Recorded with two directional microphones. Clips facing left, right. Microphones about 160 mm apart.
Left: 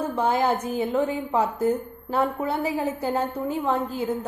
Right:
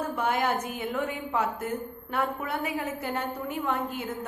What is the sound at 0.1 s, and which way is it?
A woman's voice, 30° left (ahead or behind).